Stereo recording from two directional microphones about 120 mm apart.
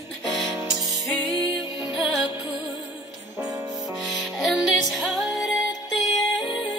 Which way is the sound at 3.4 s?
30° right (ahead or behind).